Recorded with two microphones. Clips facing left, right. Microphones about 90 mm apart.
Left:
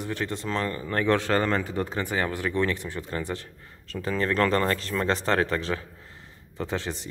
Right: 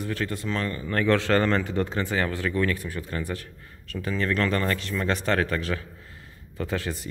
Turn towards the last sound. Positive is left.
turn(degrees=25)  # may be behind; listen again after turning